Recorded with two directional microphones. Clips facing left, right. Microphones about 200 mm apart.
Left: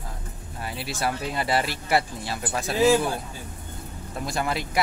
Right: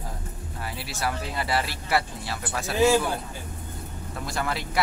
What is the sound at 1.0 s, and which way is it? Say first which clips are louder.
Speech: left 2 dB; 25° left (ahead or behind).